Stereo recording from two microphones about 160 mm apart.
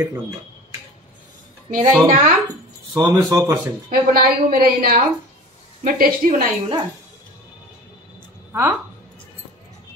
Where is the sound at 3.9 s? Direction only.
65° right (ahead or behind).